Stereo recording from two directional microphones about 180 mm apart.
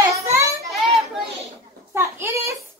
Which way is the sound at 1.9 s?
15° right (ahead or behind).